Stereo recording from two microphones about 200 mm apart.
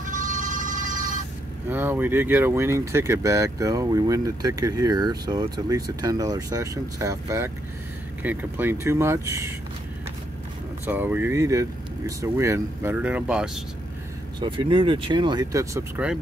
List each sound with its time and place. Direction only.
0.0 s a sound: 40° right (ahead or behind)
1.7 s speech: 10° right (ahead or behind)
10.9 s speech: 10° right (ahead or behind)
14.4 s speech: 25° right (ahead or behind)